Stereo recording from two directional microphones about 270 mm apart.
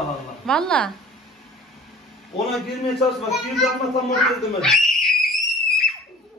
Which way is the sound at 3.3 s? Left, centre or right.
Centre.